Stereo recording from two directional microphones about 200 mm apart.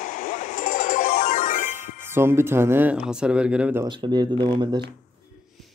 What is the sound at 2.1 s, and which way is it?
Speech, 10° right (ahead or behind).